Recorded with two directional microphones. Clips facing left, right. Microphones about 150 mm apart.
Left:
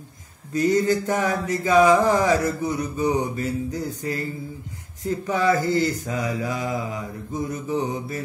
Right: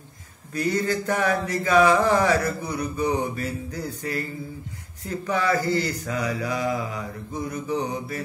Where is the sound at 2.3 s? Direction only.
20° left (ahead or behind).